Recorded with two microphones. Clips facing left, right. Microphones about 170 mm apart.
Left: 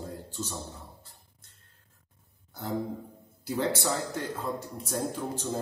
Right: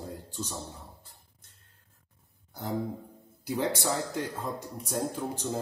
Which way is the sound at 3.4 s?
15° right (ahead or behind).